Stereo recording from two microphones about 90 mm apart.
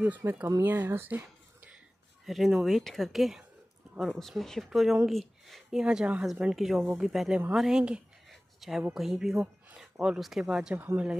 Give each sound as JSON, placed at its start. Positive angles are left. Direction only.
{"t": 0.0, "sound": "speech", "side_deg": -20}
{"t": 2.2, "sound": "speech", "side_deg": 0}
{"t": 6.5, "sound": "speech", "side_deg": 0}
{"t": 8.3, "sound": "a sound", "side_deg": 0}
{"t": 8.9, "sound": "speech", "side_deg": -5}
{"t": 10.7, "sound": "speech", "side_deg": -20}